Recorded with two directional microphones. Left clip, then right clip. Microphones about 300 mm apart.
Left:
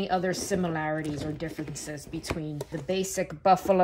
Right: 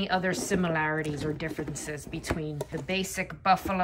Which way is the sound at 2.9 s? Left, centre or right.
Centre.